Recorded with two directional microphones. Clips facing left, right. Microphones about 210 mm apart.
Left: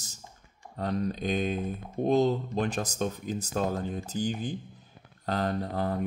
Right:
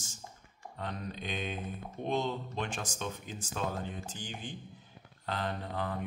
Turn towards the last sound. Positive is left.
turn(degrees=40)  # may be behind; listen again after turning